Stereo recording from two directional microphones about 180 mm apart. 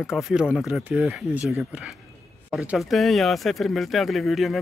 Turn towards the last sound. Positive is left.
turn(degrees=0)  # may be behind; listen again after turning